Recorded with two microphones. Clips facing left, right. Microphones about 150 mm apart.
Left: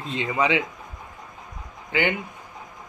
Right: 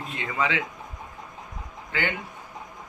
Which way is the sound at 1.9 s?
15° left (ahead or behind).